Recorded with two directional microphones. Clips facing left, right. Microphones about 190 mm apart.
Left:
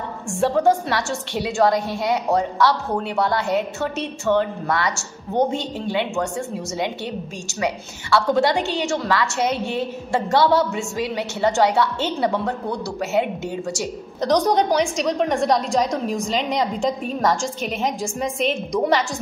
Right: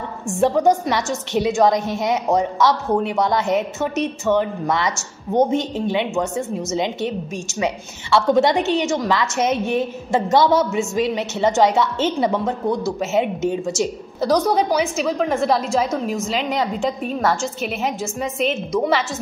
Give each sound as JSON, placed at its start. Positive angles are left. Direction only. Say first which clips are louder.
{"t": 0.4, "sound": "a woman's voice", "louder": "right 2 dB", "side_deg": -20}
{"t": 14.5, "sound": "a woman's voice", "louder": "even", "side_deg": -5}